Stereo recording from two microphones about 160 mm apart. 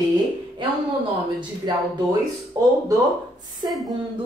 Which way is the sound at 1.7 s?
25° right (ahead or behind).